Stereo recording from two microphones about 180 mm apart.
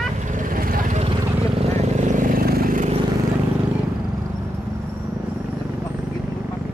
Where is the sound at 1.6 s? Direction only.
40° right (ahead or behind).